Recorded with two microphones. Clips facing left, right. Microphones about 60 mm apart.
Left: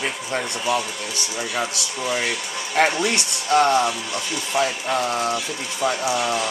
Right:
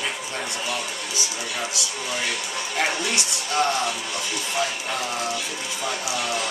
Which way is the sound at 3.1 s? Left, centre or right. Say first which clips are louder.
Left 6 dB; left.